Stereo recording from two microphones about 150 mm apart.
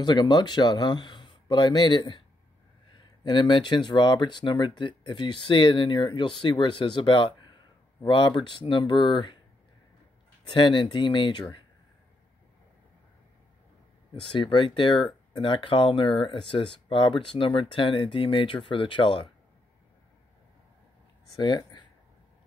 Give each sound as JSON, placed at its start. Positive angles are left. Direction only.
{"t": 0.0, "sound": "speech", "side_deg": 30}
{"t": 10.5, "sound": "speech", "side_deg": 30}
{"t": 14.3, "sound": "speech", "side_deg": 35}
{"t": 21.4, "sound": "speech", "side_deg": 25}